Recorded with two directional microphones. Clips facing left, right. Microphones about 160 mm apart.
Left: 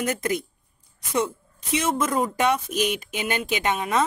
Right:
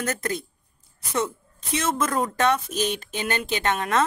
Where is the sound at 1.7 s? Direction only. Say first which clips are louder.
Left 1 dB; 10° left (ahead or behind).